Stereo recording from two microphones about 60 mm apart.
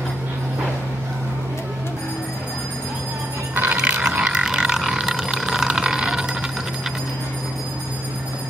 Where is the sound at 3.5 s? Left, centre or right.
Right.